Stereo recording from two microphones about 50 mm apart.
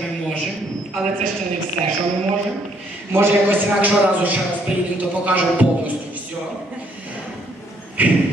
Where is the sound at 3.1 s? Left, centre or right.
Right.